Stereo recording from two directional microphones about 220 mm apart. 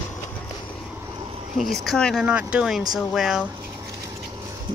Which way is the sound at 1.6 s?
Centre (ahead or behind).